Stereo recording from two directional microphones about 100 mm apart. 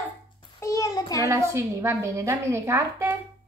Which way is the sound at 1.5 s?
25° right (ahead or behind).